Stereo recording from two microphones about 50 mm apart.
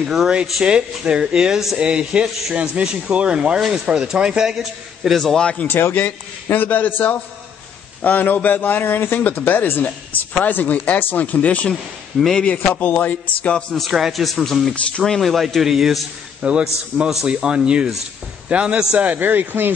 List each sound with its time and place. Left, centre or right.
0.0 s a man's voice: centre
0.7 s a man's voice: centre
3.5 s a man's voice: centre
5.4 s a man's voice: centre
5.7 s a man's voice: left
11.7 s speech: centre
12.4 s a man's voice: left
13.7 s speech: centre
14.7 s speech: centre
15.1 s speech: centre
16.3 s a man's voice: right
16.9 s speech: centre
17.3 s speech: centre; by 19.7 s right